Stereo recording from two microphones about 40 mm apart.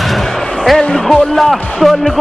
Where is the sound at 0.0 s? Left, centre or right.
Centre.